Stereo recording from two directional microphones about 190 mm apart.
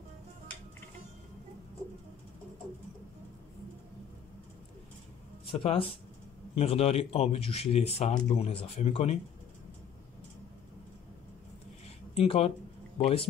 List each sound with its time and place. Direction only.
5.5 s speech: 25° left (ahead or behind)
12.2 s speech: 30° left (ahead or behind)